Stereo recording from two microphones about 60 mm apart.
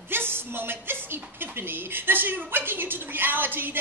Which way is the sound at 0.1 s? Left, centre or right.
Right.